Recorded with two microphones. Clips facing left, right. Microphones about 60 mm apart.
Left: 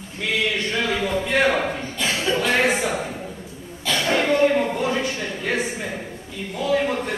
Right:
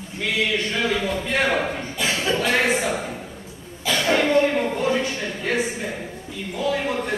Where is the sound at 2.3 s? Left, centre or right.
Centre.